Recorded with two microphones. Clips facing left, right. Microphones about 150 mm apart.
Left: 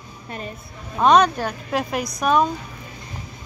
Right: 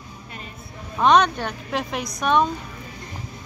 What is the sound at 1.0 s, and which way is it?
Speech, 5° left (ahead or behind).